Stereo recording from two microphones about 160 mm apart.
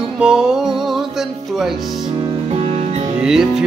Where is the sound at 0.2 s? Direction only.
5° right (ahead or behind).